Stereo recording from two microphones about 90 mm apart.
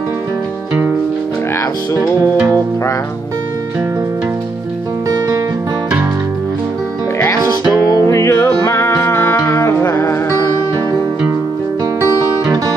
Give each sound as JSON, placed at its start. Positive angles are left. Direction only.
{"t": 7.9, "sound": "music", "side_deg": 35}
{"t": 12.0, "sound": "music", "side_deg": -40}